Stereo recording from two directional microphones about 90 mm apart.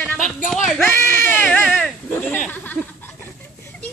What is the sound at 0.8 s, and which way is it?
Speech, 25° left (ahead or behind).